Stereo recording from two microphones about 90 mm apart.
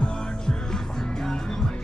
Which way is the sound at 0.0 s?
10° left (ahead or behind).